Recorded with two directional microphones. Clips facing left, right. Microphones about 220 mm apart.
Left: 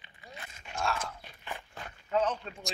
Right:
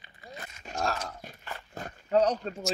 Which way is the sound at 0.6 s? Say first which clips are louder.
Right 2 dB; 40° right (ahead or behind).